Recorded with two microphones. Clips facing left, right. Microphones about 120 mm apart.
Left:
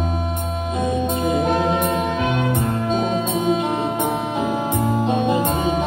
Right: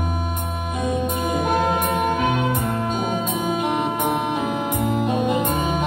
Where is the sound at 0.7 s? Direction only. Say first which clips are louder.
Left 2 dB; 25° left (ahead or behind).